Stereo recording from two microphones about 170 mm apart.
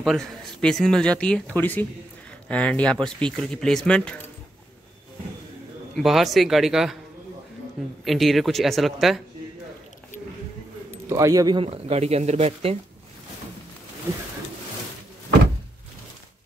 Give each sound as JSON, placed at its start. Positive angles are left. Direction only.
{"t": 0.0, "sound": "speech", "side_deg": 0}
{"t": 5.9, "sound": "speech", "side_deg": 0}
{"t": 8.0, "sound": "speech", "side_deg": 0}
{"t": 11.1, "sound": "speech", "side_deg": -20}